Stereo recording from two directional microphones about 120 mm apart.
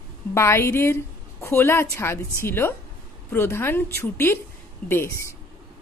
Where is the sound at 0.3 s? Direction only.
20° left (ahead or behind).